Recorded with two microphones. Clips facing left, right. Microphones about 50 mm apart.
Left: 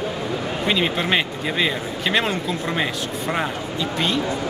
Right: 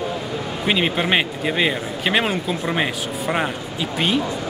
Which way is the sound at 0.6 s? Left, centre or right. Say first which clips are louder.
Right 2 dB; centre.